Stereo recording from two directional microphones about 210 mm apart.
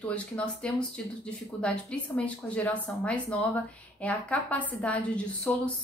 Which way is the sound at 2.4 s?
5° left (ahead or behind).